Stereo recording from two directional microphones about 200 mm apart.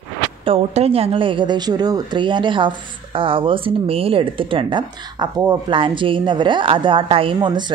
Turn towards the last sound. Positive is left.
turn(degrees=-20)  # may be behind; listen again after turning